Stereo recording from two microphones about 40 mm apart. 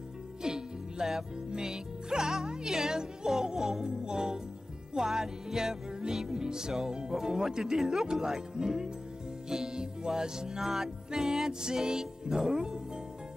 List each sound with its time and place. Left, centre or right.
0.4 s music: centre
1.5 s speech: centre
3.5 s music: centre